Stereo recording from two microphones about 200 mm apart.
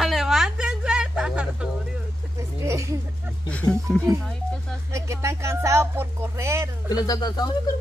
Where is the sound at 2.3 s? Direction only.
15° right (ahead or behind).